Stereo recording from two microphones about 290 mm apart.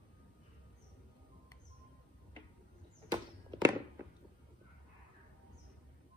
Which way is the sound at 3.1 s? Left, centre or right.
Centre.